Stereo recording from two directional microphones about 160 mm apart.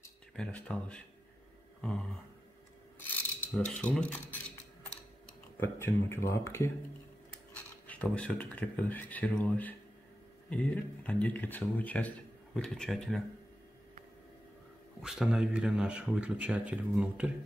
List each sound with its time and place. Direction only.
0.4 s speech: 5° left (ahead or behind)
3.1 s a sound: 5° left (ahead or behind)
5.6 s speech: 15° left (ahead or behind)
15.0 s speech: 5° right (ahead or behind)